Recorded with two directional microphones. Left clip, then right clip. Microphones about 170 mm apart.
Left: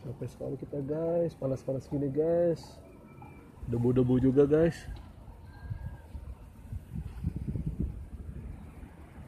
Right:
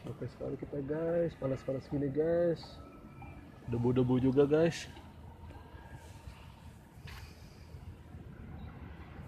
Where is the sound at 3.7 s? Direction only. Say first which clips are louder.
Left 3 dB; 45° left (ahead or behind).